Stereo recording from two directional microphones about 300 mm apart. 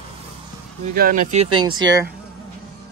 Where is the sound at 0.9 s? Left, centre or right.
Right.